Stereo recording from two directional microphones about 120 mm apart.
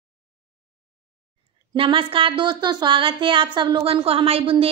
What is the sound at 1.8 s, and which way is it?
A woman's voice, 45° right (ahead or behind).